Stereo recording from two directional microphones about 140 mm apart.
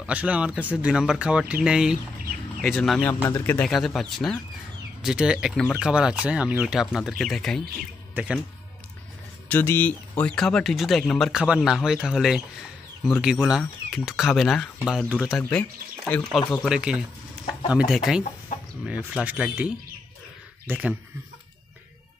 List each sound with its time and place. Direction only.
0.0 s a man's voice: 10° right (ahead or behind)
3.1 s speech: 20° left (ahead or behind)
3.6 s speech: centre (ahead or behind)
5.0 s speech: 5° right (ahead or behind)
8.1 s speech: 10° right (ahead or behind)
9.5 s speech: 15° left (ahead or behind)
11.3 s speech: 5° right (ahead or behind)
19.2 s a man's voice: 10° right (ahead or behind)